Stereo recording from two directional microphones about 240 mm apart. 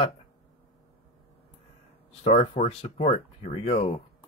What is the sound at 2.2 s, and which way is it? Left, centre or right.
Speech, left.